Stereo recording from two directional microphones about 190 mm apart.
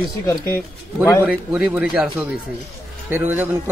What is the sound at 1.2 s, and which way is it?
A man's voice, 10° right (ahead or behind).